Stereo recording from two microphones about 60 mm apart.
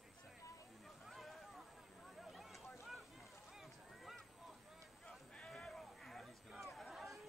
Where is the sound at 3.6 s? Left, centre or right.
Centre.